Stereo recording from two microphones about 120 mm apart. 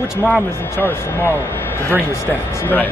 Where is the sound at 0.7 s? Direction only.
15° left (ahead or behind).